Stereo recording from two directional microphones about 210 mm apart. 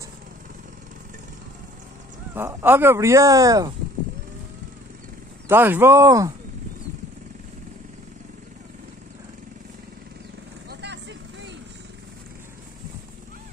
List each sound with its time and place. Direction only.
2.3 s speech: 10° right (ahead or behind)
5.5 s speech: 10° right (ahead or behind)
10.7 s vehicle: 55° right (ahead or behind)